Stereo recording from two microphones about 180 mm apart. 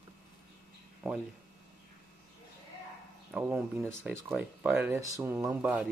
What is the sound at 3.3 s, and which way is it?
Speech, 10° right (ahead or behind).